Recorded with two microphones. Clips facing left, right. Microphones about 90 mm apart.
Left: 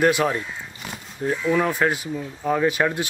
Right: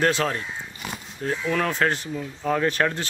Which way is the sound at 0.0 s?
15° left (ahead or behind).